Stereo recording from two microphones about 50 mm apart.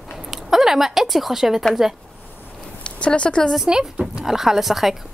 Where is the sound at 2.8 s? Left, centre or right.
Left.